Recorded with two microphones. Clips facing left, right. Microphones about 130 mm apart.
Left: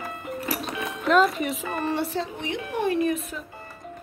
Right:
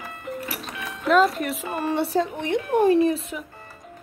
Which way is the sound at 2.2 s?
50° right (ahead or behind).